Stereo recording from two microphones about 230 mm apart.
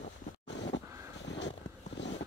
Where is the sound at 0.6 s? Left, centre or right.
Left.